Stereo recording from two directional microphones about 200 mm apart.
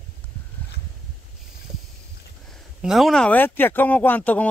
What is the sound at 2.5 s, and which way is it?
Speech, centre (ahead or behind).